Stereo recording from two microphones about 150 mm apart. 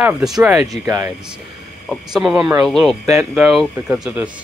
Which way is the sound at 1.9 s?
5° right (ahead or behind).